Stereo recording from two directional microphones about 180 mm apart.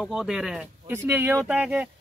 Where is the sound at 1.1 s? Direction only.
15° right (ahead or behind).